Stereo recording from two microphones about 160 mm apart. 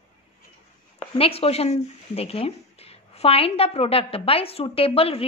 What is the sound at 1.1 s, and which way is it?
Speech, 35° left (ahead or behind).